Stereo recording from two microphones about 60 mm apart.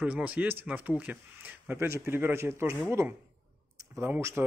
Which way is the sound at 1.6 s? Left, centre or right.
Right.